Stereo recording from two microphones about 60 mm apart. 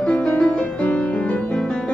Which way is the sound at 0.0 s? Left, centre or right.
Left.